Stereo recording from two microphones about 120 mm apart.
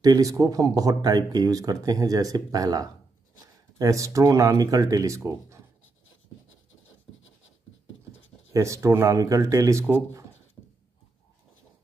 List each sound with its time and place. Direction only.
0.0 s speech: 30° right (ahead or behind)
8.5 s speech: 25° right (ahead or behind)